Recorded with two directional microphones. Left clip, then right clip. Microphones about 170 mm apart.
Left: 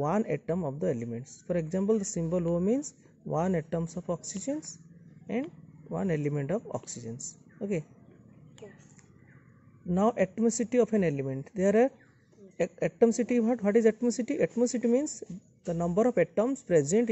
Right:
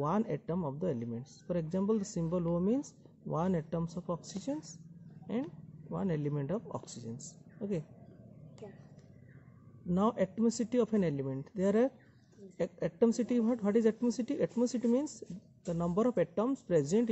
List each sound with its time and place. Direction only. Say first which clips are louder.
0.0 s speech: left 5 dB; 30° left (ahead or behind)
9.8 s speech: left 5 dB; 30° left (ahead or behind)